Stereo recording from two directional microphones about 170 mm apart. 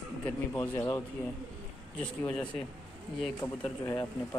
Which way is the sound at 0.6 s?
20° left (ahead or behind).